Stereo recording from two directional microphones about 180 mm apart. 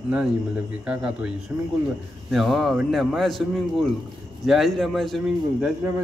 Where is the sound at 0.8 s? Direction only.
5° right (ahead or behind).